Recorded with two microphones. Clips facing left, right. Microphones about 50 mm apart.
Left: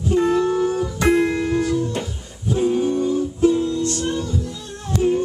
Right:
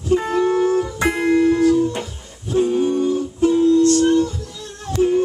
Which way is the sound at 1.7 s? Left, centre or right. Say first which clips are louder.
Right 5 dB; centre.